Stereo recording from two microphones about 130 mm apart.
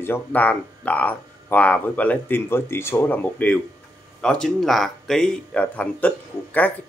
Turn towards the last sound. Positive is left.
turn(degrees=10)  # may be behind; listen again after turning